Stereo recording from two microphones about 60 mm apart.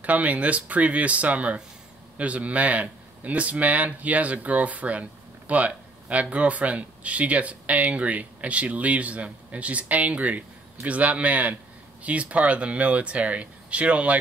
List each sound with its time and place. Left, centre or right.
0.0 s speech: right
5.5 s a sound: right
6.3 s speech: right